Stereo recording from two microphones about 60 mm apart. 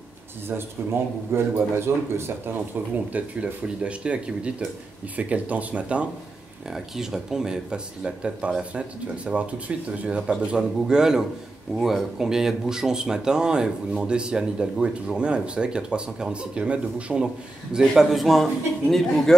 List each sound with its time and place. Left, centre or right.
1.3 s a man's voice: right
3.1 s speech: right
6.7 s speech: centre
17.7 s a man's voice: centre